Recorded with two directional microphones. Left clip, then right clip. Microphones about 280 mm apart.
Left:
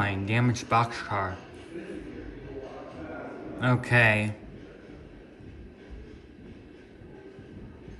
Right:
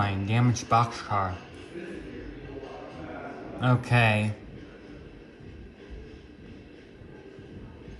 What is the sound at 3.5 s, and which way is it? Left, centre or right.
Speech, centre.